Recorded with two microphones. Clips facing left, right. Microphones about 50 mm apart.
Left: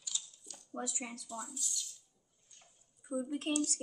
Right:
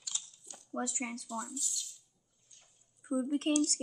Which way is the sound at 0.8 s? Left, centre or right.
Right.